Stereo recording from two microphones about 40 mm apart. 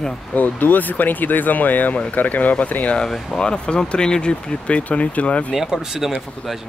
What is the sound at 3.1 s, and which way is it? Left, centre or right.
Speech, centre.